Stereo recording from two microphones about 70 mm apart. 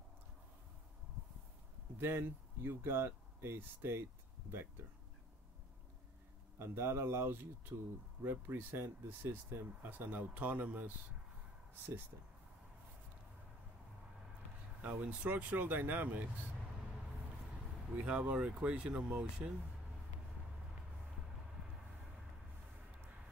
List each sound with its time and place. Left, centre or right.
2.0 s speech: right
6.6 s speech: right
14.8 s speech: right
17.9 s speech: centre